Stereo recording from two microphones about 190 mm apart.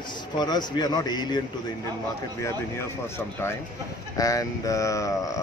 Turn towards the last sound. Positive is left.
turn(degrees=15)  # may be behind; listen again after turning